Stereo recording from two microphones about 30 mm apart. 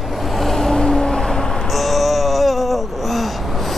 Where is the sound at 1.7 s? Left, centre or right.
Centre.